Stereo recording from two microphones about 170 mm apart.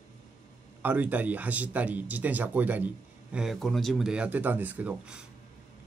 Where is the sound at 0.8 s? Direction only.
10° right (ahead or behind).